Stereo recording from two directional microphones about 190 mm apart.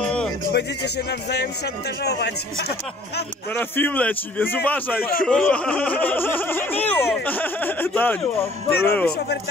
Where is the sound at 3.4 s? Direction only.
10° left (ahead or behind).